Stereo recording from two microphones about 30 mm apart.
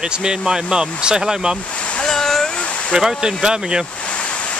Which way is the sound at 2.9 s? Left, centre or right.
Centre.